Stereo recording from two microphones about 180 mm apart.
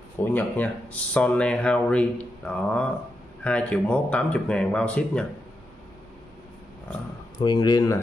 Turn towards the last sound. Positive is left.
turn(degrees=20)  # may be behind; listen again after turning